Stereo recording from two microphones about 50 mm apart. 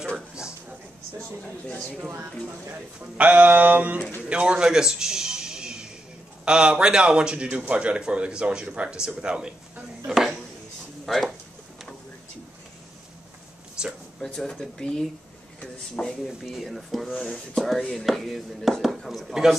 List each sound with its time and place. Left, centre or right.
1.4 s speech: left
2.7 s a man's voice: right
11.1 s speech: centre
13.8 s a sound: centre
14.2 s speech: centre
16.3 s speech: centre